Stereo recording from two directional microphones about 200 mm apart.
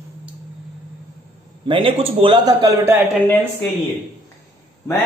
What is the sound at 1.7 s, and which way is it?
A man's voice, 25° right (ahead or behind).